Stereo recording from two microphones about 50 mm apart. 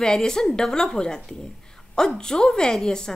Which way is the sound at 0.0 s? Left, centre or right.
Centre.